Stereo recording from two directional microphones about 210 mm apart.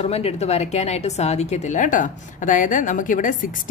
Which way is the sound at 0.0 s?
30° left (ahead or behind).